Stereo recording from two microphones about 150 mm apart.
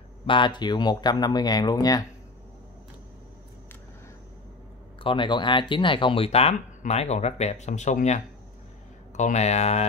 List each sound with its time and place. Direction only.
0.3 s speech: 30° left (ahead or behind)
5.0 s speech: 30° left (ahead or behind)